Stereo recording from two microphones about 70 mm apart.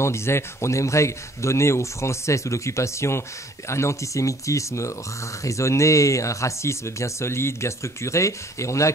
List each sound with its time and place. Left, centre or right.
0.0 s speech: left